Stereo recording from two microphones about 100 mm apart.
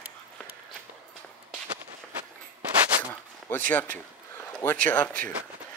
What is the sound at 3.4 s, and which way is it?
Speech, 15° left (ahead or behind).